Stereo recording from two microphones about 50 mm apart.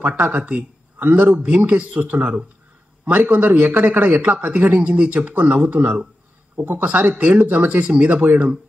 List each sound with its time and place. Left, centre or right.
0.0 s a man's voice: right